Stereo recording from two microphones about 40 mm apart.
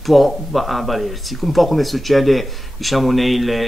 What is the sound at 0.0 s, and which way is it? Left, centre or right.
Speech, centre.